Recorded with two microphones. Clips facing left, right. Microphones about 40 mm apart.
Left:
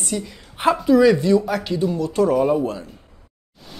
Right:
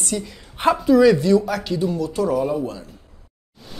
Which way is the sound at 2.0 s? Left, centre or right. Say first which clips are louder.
Left 3 dB; left.